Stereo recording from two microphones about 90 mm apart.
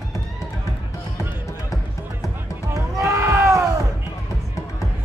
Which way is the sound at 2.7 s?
35° right (ahead or behind).